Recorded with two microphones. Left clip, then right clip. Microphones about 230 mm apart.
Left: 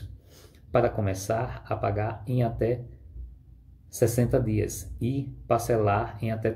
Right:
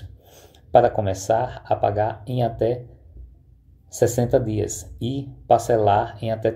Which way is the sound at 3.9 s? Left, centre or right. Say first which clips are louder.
Right 5 dB; centre.